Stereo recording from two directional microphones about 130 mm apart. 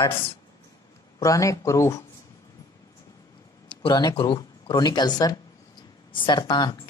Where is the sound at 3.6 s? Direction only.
35° left (ahead or behind).